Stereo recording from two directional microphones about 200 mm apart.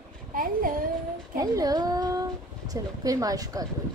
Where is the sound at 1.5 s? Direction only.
20° right (ahead or behind).